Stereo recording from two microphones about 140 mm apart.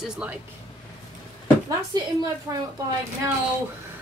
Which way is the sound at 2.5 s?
25° right (ahead or behind).